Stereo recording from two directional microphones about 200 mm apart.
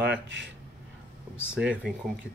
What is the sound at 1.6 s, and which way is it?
Speech, 5° right (ahead or behind).